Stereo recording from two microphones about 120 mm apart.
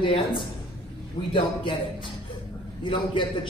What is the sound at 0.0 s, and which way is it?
A man's voice, 45° left (ahead or behind).